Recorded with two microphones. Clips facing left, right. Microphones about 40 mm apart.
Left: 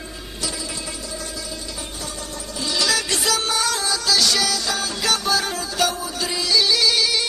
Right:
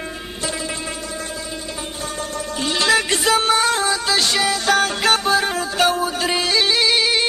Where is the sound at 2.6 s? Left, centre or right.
Right.